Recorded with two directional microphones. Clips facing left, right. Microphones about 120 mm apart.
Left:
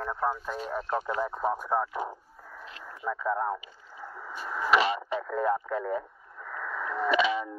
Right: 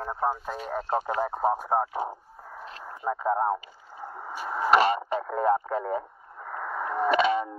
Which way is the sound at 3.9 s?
50° right (ahead or behind).